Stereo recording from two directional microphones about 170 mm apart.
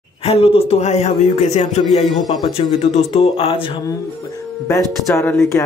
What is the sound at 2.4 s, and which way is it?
A man's voice, 35° left (ahead or behind).